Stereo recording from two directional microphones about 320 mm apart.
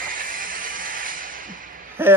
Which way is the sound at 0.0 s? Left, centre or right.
Right.